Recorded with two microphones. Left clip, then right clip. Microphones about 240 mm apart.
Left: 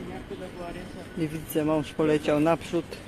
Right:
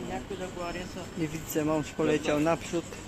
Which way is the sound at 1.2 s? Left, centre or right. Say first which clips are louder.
Left 3 dB; centre.